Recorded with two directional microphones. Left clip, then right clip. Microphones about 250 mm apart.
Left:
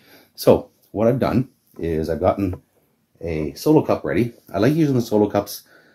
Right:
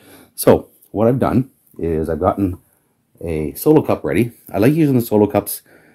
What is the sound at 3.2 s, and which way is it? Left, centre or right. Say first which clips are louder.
Speech: right 4 dB; right.